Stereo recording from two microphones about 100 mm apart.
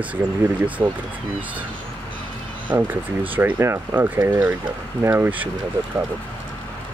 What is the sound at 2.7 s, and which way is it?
Speech, 20° right (ahead or behind).